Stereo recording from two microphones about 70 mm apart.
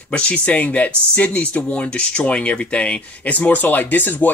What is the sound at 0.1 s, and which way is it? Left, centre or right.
Speech, centre.